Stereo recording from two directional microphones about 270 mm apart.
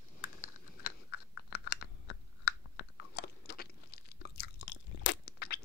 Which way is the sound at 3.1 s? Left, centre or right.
Left.